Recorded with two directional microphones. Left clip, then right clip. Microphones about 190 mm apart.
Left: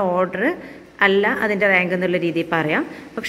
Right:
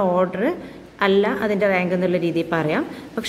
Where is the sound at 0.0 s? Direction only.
5° left (ahead or behind).